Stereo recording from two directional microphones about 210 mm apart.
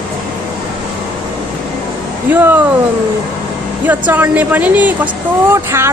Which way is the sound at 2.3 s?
10° right (ahead or behind).